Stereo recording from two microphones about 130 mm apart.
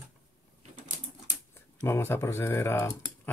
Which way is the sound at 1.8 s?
20° left (ahead or behind).